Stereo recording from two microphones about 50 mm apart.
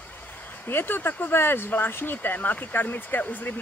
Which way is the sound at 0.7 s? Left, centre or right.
Left.